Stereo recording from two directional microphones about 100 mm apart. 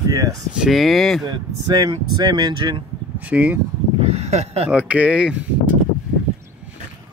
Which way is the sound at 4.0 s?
90° right.